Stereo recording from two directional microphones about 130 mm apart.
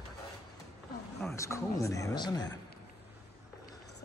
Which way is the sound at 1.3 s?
25° left (ahead or behind).